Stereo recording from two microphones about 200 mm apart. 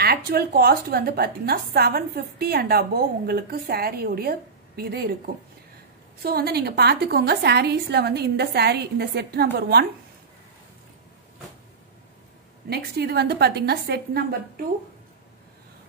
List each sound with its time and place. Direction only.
0.0 s a woman's voice: 50° right (ahead or behind)
12.6 s a woman's voice: 55° right (ahead or behind)